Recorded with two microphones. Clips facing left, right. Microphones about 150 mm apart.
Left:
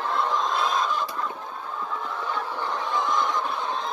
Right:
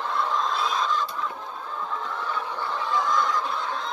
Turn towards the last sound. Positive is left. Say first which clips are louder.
# even
turn(degrees=25)  # may be behind; listen again after turning